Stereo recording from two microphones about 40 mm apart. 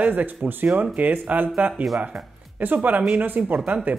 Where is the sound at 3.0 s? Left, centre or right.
Right.